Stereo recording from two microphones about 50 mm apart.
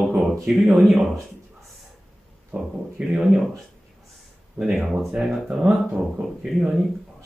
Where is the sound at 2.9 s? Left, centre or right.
Centre.